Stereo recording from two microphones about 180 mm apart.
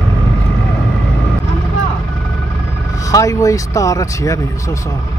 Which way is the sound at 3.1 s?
20° left (ahead or behind).